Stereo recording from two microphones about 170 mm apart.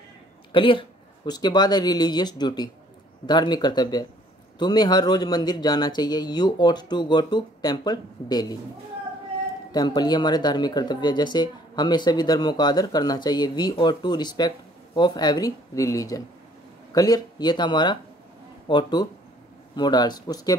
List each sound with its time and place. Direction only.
0.5 s speech: 30° left (ahead or behind)
9.7 s speech: 25° left (ahead or behind)